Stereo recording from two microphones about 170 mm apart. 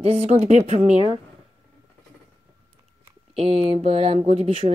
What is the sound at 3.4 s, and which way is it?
Speech, 40° right (ahead or behind).